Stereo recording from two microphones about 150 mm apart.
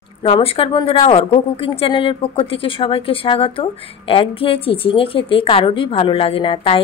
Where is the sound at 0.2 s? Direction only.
40° left (ahead or behind).